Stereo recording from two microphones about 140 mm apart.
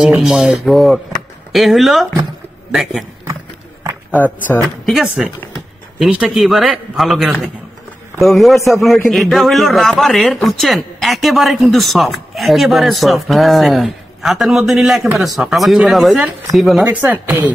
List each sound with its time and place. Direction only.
0.0 s a man's voice: 5° right (ahead or behind)
4.2 s speech: 10° left (ahead or behind)
4.8 s a man's voice: centre (ahead or behind)
16.9 s speech: 10° right (ahead or behind)